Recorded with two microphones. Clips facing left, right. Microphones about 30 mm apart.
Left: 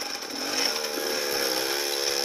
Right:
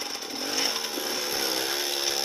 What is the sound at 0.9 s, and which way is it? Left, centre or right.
Chainsaw, centre.